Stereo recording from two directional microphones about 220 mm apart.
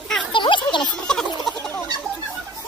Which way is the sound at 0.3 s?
20° left (ahead or behind).